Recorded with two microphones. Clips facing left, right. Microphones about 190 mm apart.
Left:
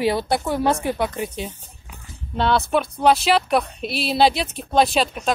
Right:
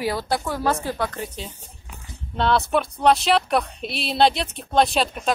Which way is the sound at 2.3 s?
Centre (ahead or behind).